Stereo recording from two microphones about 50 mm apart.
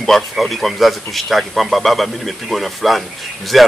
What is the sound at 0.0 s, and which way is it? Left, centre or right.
A man's voice, centre.